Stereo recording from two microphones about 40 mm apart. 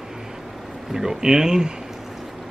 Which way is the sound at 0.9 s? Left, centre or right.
Centre.